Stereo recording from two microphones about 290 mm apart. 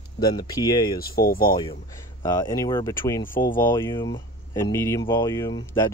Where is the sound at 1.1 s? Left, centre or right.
Left.